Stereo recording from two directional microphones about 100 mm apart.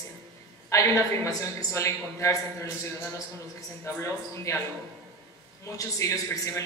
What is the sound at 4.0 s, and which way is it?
Speech, 30° left (ahead or behind).